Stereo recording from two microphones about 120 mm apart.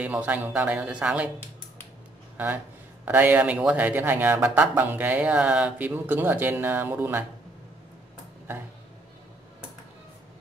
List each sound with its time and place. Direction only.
0.0 s speech: 10° right (ahead or behind)
2.3 s speech: 15° right (ahead or behind)